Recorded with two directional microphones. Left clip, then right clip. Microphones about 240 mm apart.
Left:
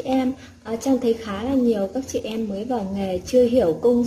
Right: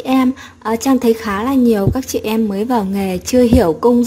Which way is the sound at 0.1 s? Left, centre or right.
Right.